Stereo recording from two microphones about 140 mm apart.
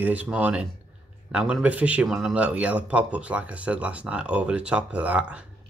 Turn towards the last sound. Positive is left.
turn(degrees=-10)  # may be behind; listen again after turning